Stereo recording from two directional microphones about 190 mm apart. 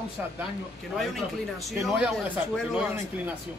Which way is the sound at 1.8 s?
5° right (ahead or behind).